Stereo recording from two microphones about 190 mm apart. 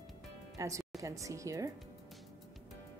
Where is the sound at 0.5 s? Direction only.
15° right (ahead or behind).